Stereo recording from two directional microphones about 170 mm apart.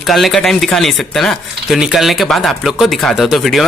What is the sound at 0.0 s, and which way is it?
Speech, centre (ahead or behind).